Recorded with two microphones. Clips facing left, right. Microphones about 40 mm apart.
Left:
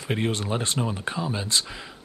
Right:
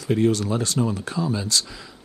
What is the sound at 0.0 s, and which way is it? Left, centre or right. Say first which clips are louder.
Speech: right 6 dB; left.